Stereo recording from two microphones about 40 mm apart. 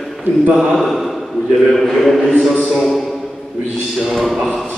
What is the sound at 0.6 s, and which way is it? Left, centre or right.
A man's voice, centre.